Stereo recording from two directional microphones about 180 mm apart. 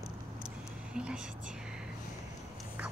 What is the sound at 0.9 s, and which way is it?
Speech, 5° right (ahead or behind).